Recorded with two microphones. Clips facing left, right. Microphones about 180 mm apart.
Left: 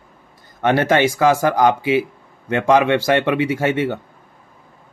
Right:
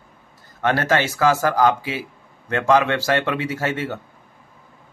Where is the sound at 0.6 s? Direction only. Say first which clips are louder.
Left 4 dB; 20° left (ahead or behind).